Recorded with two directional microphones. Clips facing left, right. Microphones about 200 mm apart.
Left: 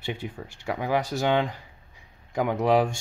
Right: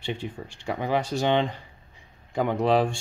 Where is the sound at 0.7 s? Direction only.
10° left (ahead or behind).